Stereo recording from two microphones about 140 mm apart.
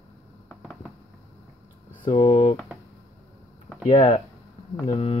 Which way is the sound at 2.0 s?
35° left (ahead or behind).